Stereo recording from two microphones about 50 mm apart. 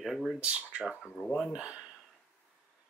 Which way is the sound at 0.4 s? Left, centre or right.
Right.